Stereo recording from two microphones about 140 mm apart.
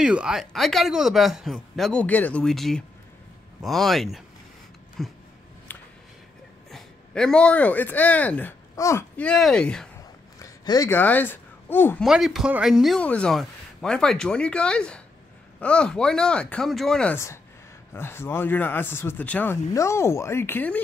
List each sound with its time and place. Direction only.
0.0 s speech: 5° right (ahead or behind)
6.7 s speech: 5° left (ahead or behind)
8.7 s speech: 20° left (ahead or behind)
9.1 s speech: 5° left (ahead or behind)
10.4 s a sound: 25° left (ahead or behind)
10.9 s speech: 15° left (ahead or behind)
12.0 s speech: centre (ahead or behind)
17.1 s speech: 20° left (ahead or behind)